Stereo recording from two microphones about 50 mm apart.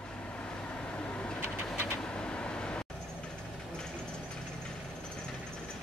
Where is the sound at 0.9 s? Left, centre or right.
Left.